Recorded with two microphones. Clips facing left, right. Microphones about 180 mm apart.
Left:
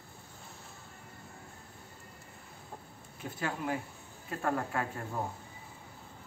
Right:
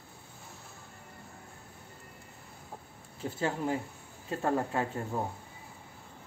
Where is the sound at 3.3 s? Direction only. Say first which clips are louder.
Right 3 dB; 25° right (ahead or behind).